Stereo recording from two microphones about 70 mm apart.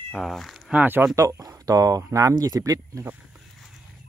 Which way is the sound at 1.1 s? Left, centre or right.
Right.